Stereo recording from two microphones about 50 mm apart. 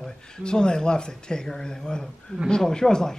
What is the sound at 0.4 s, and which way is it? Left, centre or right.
Speech, centre.